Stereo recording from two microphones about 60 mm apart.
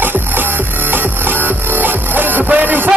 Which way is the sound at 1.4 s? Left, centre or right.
Right.